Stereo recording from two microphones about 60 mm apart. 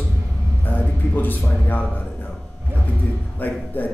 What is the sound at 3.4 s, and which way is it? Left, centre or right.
Speech, left.